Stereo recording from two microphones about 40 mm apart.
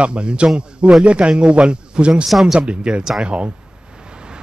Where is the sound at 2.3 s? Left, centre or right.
Centre.